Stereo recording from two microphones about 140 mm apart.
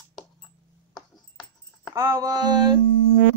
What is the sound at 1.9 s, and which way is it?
Female singing, 25° right (ahead or behind).